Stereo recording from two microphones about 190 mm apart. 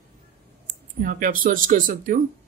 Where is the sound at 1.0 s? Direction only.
45° right (ahead or behind).